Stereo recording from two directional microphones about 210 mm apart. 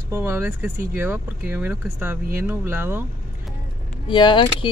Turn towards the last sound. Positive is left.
turn(degrees=25)  # may be behind; listen again after turning